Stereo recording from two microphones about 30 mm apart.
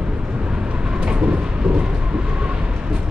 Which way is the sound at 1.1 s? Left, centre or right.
Right.